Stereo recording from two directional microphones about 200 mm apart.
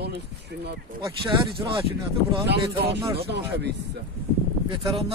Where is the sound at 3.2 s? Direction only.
55° right (ahead or behind).